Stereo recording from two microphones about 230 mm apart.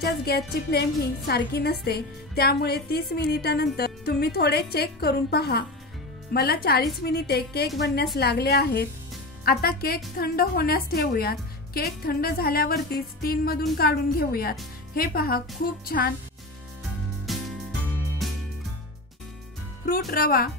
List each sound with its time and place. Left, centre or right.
0.0 s a woman's voice: left
17.3 s music: centre
20.1 s a woman's voice: left